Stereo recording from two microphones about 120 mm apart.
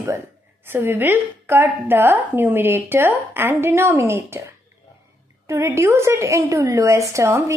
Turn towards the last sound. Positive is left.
turn(degrees=-25)  # may be behind; listen again after turning